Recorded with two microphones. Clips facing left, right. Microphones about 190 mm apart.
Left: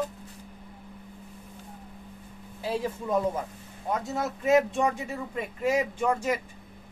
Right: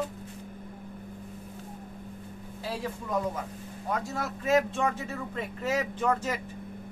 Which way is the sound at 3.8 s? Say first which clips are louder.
Left 3 dB; 20° left (ahead or behind).